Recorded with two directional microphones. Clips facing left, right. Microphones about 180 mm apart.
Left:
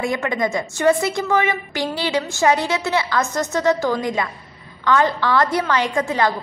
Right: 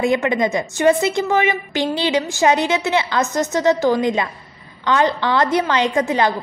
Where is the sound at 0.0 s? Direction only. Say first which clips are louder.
Right 4 dB; 20° right (ahead or behind).